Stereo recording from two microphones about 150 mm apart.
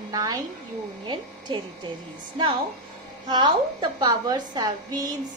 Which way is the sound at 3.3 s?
30° right (ahead or behind).